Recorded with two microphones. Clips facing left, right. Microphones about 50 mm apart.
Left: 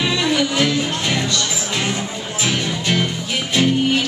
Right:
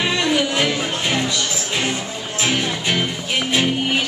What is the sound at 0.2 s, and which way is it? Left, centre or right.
Music, centre.